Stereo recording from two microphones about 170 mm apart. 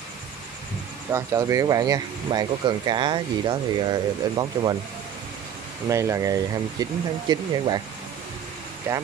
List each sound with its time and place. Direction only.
1.1 s speech: 20° right (ahead or behind)
5.9 s speech: 20° right (ahead or behind)